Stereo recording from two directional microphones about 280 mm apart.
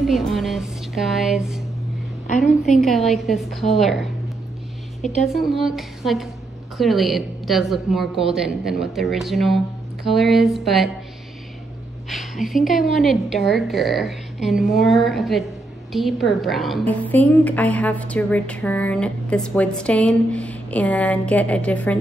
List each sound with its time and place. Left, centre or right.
0.0 s a sound: centre
2.8 s a woman's voice: centre
5.0 s a woman's voice: left
5.3 s a woman's voice: centre
12.1 s a woman's voice: centre